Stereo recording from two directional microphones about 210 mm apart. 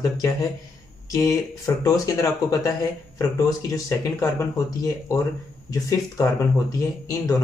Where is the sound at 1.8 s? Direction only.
15° left (ahead or behind).